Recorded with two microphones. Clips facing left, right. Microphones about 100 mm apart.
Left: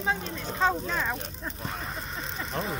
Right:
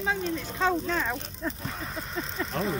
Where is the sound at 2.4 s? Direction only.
Centre (ahead or behind).